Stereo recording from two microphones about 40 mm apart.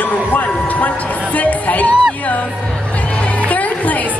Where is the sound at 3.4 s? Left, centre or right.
Left.